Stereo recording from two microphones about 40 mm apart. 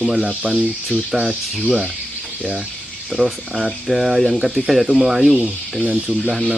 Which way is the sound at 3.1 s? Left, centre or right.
Centre.